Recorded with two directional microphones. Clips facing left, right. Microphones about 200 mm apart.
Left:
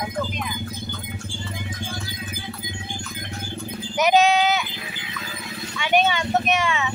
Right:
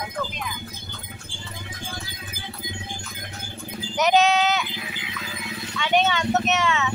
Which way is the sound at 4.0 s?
10° left (ahead or behind).